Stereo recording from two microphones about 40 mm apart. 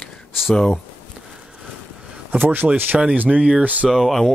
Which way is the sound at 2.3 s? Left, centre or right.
Right.